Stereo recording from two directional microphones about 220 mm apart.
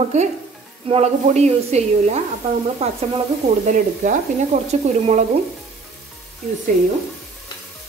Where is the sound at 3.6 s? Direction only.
35° right (ahead or behind).